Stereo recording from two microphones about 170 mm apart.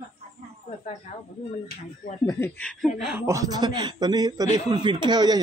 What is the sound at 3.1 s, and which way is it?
A man's voice, 15° right (ahead or behind).